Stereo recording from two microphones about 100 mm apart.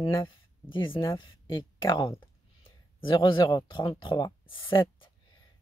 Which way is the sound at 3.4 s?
35° left (ahead or behind).